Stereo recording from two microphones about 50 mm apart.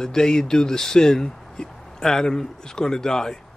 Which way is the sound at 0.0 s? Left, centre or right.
Centre.